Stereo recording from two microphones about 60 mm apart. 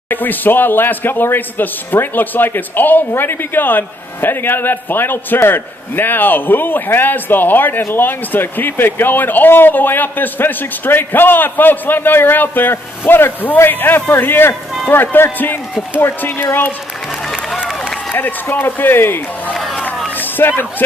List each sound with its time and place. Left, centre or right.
0.1 s speech: left
18.5 s speech: left
20.2 s a sound: left